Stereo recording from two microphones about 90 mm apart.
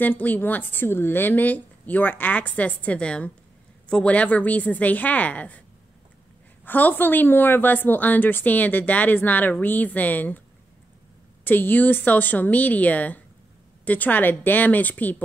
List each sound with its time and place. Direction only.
0.0 s a woman's voice: 20° left (ahead or behind)
6.6 s a woman's voice: 20° left (ahead or behind)
11.4 s a woman's voice: 20° left (ahead or behind)